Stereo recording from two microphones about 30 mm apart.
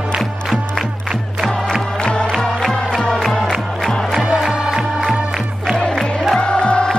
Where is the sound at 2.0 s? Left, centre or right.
Left.